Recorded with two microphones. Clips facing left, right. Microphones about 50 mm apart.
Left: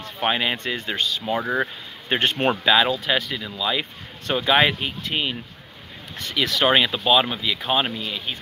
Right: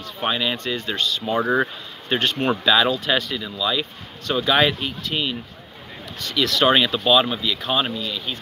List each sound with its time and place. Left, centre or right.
0.2 s speech: left
1.4 s speech: centre
2.0 s speech: left
2.6 s speech: centre
3.5 s speech: left
7.9 s speech: left